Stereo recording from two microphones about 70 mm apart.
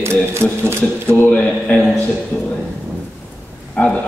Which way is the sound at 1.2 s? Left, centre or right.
Centre.